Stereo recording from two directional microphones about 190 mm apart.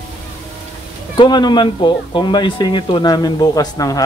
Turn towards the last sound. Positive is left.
turn(degrees=20)  # may be behind; listen again after turning